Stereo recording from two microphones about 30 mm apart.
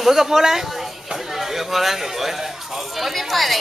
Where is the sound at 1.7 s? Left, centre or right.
Centre.